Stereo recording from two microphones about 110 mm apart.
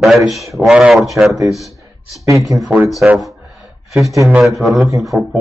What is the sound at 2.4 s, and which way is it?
Speech, centre (ahead or behind).